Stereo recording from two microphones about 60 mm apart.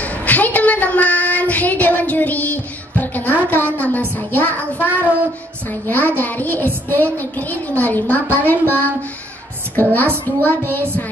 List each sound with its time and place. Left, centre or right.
0.0 s child singing: left
3.4 s a woman's voice: left